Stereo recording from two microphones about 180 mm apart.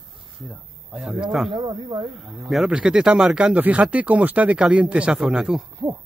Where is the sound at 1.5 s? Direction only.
25° right (ahead or behind).